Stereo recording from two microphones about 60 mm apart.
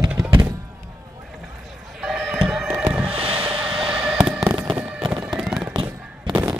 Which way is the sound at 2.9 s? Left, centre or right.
Right.